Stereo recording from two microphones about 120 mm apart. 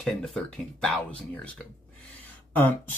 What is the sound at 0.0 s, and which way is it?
Speech, centre (ahead or behind).